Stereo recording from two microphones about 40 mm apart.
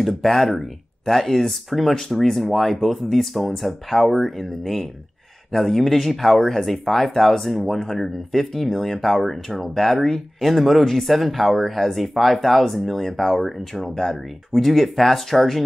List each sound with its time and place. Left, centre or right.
0.0 s speech: centre